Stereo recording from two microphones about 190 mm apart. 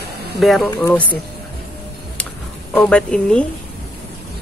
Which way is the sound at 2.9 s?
5° left (ahead or behind).